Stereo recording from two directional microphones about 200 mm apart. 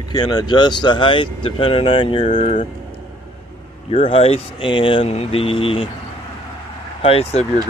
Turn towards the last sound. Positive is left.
turn(degrees=30)  # may be behind; listen again after turning